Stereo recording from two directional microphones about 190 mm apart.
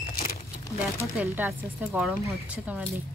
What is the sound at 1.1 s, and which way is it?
Speech, 10° right (ahead or behind).